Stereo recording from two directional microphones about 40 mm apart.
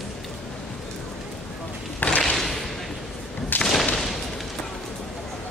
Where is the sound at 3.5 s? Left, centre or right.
Left.